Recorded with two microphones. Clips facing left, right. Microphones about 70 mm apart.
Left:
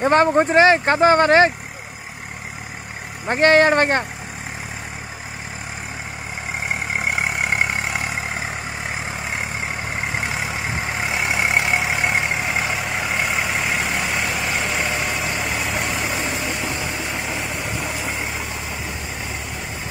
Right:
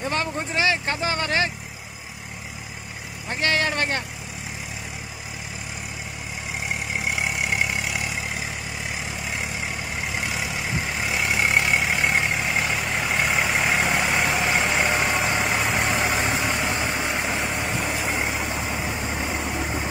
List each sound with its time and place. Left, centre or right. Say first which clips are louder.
0.0 s speech: left 11 dB; left
3.3 s speech: left 10 dB; left
6.9 s vehicle: left 4 dB; left; by 12.8 s centre
12.9 s vehicle: right 1 dB; centre
14.8 s vehicle: right 1 dB; right